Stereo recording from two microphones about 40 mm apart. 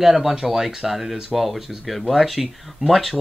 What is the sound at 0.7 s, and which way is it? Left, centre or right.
Speech, centre.